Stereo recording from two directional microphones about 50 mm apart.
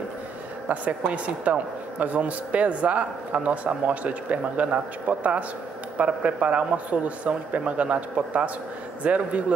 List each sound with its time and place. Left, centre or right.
0.7 s a woman's voice: right